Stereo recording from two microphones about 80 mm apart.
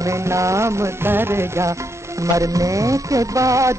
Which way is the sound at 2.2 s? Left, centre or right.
Right.